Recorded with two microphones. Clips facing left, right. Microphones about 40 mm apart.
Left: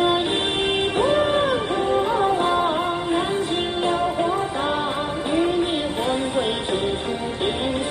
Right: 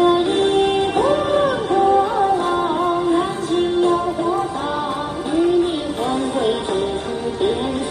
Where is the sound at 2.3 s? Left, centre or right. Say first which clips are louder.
Right 2 dB; left.